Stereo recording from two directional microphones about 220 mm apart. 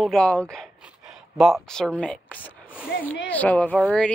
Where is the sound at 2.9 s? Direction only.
45° left (ahead or behind).